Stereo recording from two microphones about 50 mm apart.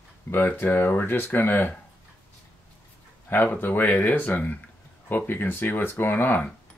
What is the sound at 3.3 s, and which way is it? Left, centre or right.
Speech, left.